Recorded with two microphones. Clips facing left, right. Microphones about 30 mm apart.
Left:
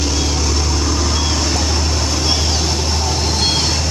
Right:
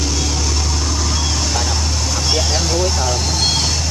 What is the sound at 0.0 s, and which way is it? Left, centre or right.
Vehicle, centre.